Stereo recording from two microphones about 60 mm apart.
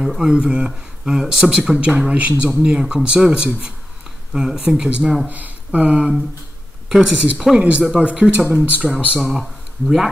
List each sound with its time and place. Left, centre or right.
0.0 s speech: centre
1.7 s speech: centre
5.2 s a sound: right
6.9 s speech: centre
7.2 s speech: right
9.2 s speech: centre